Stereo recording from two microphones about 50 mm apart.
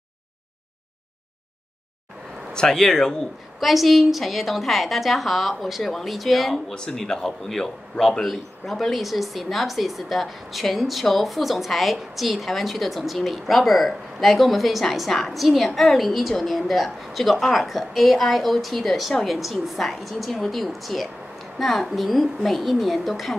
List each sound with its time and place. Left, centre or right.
2.5 s speech: centre
3.5 s speech: centre
6.7 s speech: centre